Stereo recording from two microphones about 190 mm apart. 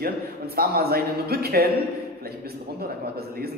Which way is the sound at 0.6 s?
55° right (ahead or behind).